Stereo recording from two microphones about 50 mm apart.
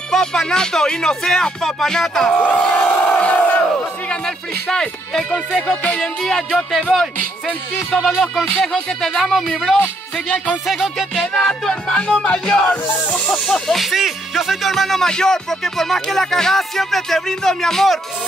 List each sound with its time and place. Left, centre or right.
0.1 s speech: centre
2.3 s music: left
2.7 s crowd: left
4.6 s speech: centre
5.5 s music: left
6.2 s speech: centre
8.1 s speech: centre
11.1 s speech: centre
11.7 s music: left
13.0 s snake: left
13.7 s speech: centre